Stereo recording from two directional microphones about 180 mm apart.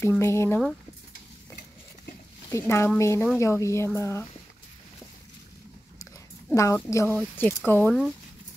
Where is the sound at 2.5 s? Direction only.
15° left (ahead or behind).